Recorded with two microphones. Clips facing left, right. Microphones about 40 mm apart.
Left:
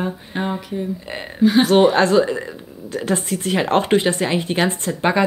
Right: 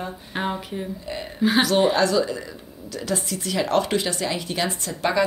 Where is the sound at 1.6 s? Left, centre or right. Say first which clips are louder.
Left 5 dB; left.